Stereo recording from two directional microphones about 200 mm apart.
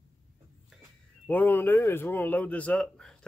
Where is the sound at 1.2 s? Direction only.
10° left (ahead or behind).